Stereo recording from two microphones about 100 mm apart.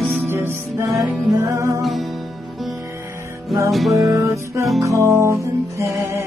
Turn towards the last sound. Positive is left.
turn(degrees=-30)  # may be behind; listen again after turning